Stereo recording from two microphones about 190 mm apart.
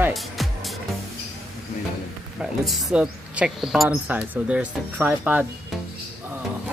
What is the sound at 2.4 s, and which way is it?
Speech, centre (ahead or behind).